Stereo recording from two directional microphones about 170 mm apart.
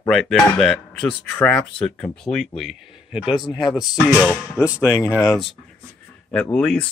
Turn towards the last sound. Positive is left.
turn(degrees=5)  # may be behind; listen again after turning